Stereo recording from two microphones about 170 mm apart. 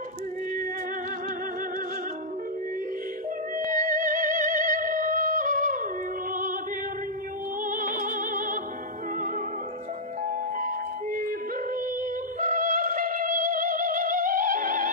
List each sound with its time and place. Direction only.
3.5 s music: 50° right (ahead or behind)
7.6 s music: 55° right (ahead or behind)
12.4 s music: 50° right (ahead or behind)